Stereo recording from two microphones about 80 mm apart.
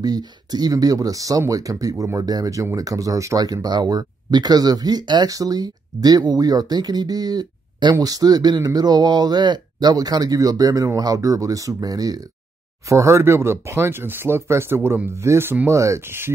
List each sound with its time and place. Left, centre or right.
0.0 s speech: right
3.4 s speech: right
5.3 s speech: right